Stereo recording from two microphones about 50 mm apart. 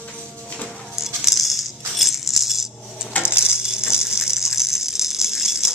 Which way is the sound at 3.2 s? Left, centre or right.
Centre.